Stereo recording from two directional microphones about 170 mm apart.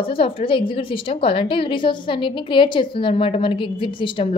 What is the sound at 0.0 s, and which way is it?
A woman's voice, 30° left (ahead or behind).